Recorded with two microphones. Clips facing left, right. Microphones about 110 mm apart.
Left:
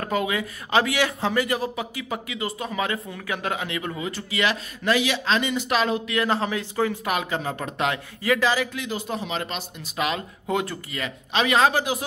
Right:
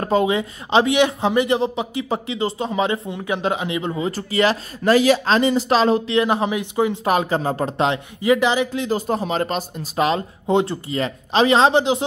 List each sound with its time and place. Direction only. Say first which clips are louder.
0.0 s speech: right 7 dB; 30° right (ahead or behind)
4.1 s speech: right 6 dB; 35° right (ahead or behind)
6.2 s speech: right 4 dB; 15° right (ahead or behind)
7.1 s speech: right 7 dB; 35° right (ahead or behind)
8.8 s speech: right 8 dB; 40° right (ahead or behind); by 12.0 s 25° right (ahead or behind)